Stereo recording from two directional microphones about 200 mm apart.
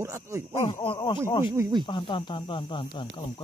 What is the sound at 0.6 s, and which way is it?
Speech, 25° left (ahead or behind).